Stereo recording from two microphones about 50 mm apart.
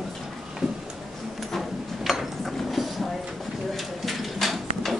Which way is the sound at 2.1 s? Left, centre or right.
Centre.